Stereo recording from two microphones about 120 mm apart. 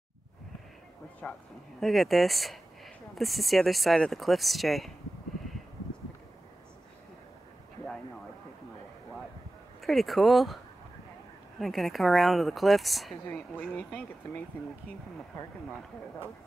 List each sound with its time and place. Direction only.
1.2 s speech: 10° left (ahead or behind)
9.8 s speech: centre (ahead or behind)
11.6 s speech: centre (ahead or behind)
13.3 s speech: 15° left (ahead or behind)